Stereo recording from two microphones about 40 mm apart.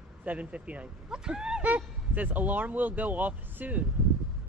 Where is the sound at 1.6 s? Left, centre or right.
Right.